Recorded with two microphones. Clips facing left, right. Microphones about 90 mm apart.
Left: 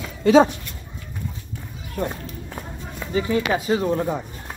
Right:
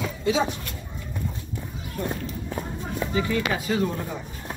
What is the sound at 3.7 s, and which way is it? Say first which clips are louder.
Speech: left 5 dB; 40° left (ahead or behind).